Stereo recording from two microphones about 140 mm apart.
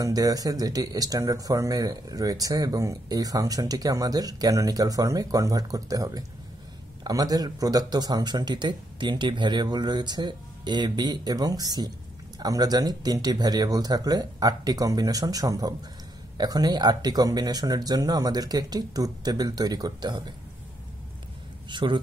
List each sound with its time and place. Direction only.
0.0 s speech: 25° right (ahead or behind)
21.6 s speech: 35° right (ahead or behind)